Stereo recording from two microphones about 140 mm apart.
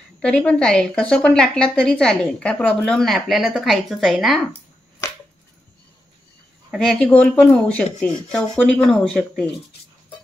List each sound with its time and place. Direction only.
0.2 s a woman's voice: 10° left (ahead or behind)
5.0 s a sound: 20° left (ahead or behind)
6.7 s a woman's voice: centre (ahead or behind)